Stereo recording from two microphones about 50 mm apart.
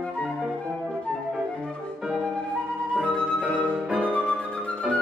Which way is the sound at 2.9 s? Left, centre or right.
Centre.